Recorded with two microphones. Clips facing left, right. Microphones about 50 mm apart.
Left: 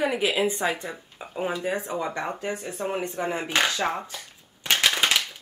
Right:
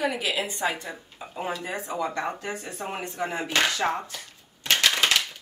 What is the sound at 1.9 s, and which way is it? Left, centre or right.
Speech, left.